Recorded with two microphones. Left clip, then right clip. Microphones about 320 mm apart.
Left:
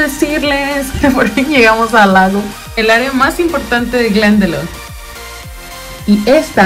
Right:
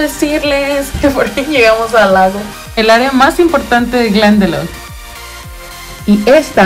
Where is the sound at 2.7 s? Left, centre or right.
Centre.